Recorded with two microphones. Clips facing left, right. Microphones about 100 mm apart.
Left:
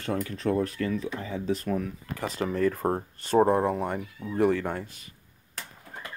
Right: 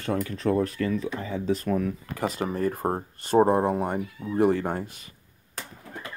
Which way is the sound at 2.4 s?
35° right (ahead or behind).